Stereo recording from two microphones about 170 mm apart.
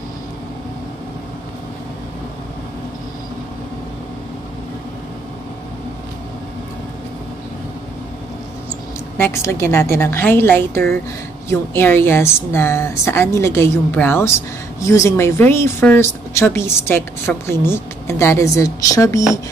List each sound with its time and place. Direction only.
9.2 s speech: 15° left (ahead or behind)